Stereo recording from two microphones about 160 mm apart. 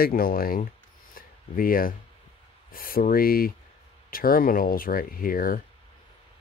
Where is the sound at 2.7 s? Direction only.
65° left (ahead or behind).